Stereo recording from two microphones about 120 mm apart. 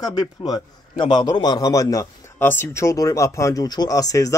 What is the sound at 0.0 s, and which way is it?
A man's voice, 35° left (ahead or behind).